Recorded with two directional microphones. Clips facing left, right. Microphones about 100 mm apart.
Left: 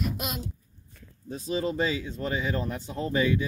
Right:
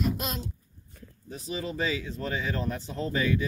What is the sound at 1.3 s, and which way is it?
A child's voice, 30° left (ahead or behind).